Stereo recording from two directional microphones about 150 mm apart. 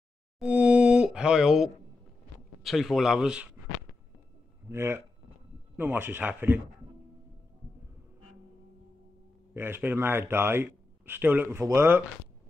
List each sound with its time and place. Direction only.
0.4 s a sound: 10° right (ahead or behind)
2.6 s speech: centre (ahead or behind)
4.6 s a man's voice: 15° right (ahead or behind)
9.5 s a man's voice: 15° right (ahead or behind)